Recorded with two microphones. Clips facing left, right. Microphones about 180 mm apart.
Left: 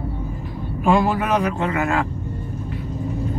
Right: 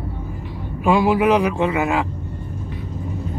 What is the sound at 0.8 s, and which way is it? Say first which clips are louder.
Speech: right 3 dB; 5° right (ahead or behind).